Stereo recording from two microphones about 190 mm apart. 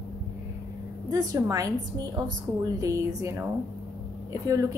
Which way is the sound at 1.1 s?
20° right (ahead or behind).